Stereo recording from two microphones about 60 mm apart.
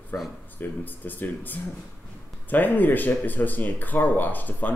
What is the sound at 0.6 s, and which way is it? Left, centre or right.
Speech, left.